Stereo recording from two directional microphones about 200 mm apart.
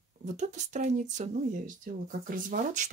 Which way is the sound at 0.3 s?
40° right (ahead or behind).